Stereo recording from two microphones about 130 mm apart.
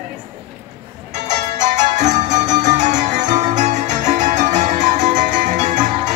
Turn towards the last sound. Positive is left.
turn(degrees=-70)  # may be behind; listen again after turning